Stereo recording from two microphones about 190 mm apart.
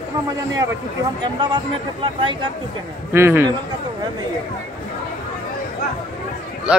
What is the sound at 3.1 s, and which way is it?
Speech, 15° right (ahead or behind).